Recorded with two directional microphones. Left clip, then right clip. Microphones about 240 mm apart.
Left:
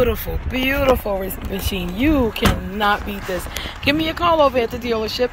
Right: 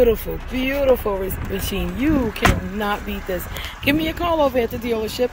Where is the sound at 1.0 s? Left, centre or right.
Centre.